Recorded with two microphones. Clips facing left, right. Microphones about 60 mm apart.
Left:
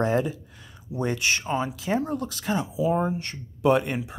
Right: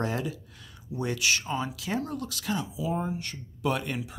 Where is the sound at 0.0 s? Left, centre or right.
Left.